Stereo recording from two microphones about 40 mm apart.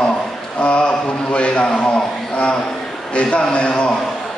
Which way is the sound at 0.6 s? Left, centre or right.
Left.